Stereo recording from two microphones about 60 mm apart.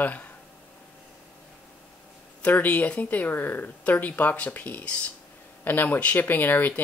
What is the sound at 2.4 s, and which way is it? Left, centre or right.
Speech, left.